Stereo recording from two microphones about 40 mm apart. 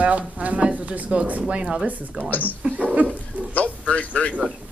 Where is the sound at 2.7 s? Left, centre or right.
Right.